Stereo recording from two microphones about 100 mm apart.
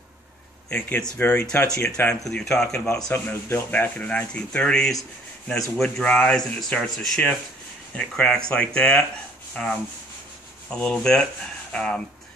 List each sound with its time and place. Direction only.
0.7 s speech: 15° left (ahead or behind)
2.2 s speech: 5° left (ahead or behind)